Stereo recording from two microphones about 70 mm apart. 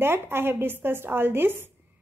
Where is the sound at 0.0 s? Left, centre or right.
Right.